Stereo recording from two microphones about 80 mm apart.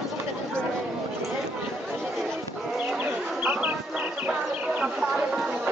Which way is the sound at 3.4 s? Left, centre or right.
Right.